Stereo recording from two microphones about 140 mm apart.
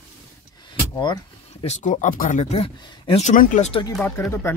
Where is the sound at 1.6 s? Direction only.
55° left (ahead or behind); by 3.3 s 40° left (ahead or behind).